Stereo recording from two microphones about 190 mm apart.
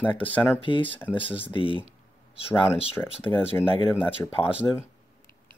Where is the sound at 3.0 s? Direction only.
5° left (ahead or behind).